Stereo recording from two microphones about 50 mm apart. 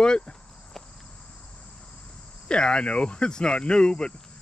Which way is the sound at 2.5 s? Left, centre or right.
Centre.